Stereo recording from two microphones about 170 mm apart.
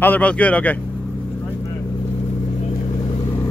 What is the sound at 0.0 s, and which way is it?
Speech, 10° left (ahead or behind).